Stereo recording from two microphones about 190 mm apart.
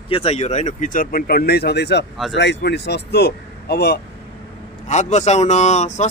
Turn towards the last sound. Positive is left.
turn(degrees=40)  # may be behind; listen again after turning